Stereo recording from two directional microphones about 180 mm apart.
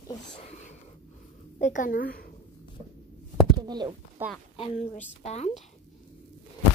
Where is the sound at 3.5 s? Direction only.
25° right (ahead or behind).